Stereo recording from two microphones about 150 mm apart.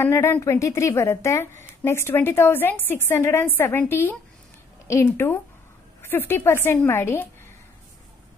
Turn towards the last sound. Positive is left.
turn(degrees=15)  # may be behind; listen again after turning